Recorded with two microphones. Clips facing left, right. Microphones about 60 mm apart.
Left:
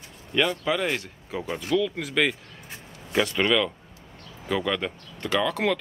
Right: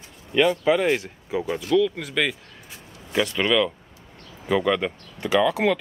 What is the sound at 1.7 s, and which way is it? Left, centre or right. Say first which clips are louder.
Speech: right 3 dB; centre.